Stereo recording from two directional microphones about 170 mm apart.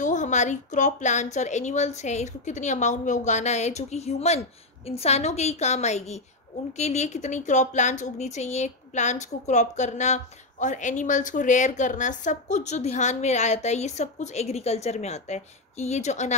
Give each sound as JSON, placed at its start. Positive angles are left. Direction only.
{"t": 0.0, "sound": "a woman's voice", "side_deg": 45}